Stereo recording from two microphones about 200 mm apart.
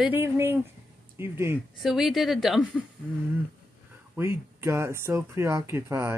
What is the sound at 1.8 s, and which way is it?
A woman's voice, centre (ahead or behind).